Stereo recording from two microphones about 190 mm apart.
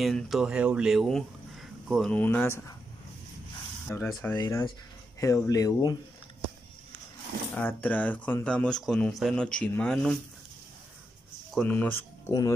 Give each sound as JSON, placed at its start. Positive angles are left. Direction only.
{"t": 0.0, "sound": "speech", "side_deg": 0}
{"t": 3.9, "sound": "speech", "side_deg": 15}
{"t": 7.5, "sound": "speech", "side_deg": 10}
{"t": 11.5, "sound": "speech", "side_deg": 10}